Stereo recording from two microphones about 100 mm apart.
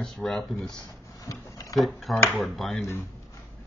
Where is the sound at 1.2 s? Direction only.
35° left (ahead or behind).